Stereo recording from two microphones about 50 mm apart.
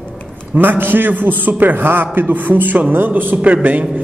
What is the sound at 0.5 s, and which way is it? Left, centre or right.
A man's voice, right.